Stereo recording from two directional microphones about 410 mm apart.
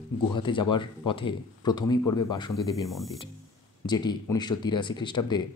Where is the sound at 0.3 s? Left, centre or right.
Centre.